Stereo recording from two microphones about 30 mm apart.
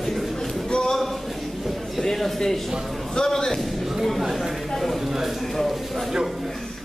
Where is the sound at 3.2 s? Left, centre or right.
Left.